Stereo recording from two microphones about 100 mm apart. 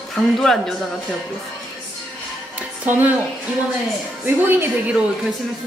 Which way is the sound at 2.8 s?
20° right (ahead or behind).